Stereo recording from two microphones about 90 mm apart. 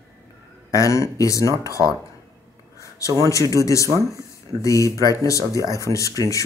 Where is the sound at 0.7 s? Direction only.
35° left (ahead or behind).